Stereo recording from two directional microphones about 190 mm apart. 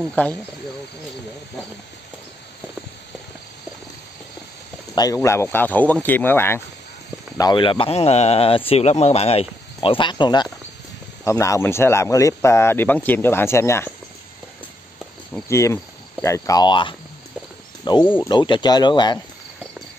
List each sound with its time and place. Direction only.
0.1 s speech: 5° left (ahead or behind)
4.9 s speech: 20° left (ahead or behind)
7.3 s speech: 25° left (ahead or behind)
15.4 s speech: 15° left (ahead or behind)
18.0 s speech: 10° left (ahead or behind)
18.3 s speech: 25° left (ahead or behind)